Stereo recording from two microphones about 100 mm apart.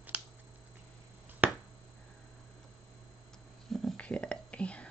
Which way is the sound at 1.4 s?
20° right (ahead or behind).